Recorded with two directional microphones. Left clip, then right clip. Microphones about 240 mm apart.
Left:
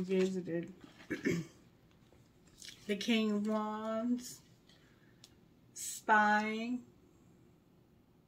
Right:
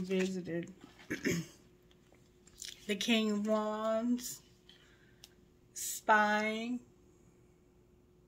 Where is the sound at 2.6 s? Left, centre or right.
Right.